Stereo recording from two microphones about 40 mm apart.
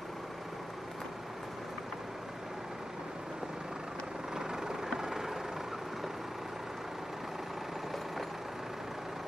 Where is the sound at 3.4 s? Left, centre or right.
Centre.